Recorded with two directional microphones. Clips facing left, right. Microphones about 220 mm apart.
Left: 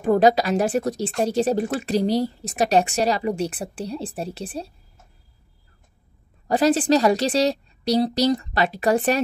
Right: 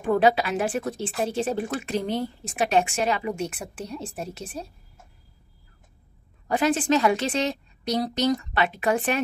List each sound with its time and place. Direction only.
0.0 s a woman's voice: 40° left (ahead or behind)
6.4 s a woman's voice: 35° left (ahead or behind)